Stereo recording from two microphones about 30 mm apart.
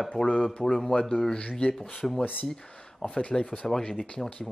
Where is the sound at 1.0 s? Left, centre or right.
Centre.